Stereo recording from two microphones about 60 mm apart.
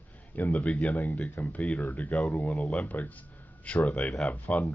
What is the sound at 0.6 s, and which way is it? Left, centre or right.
Speech, centre.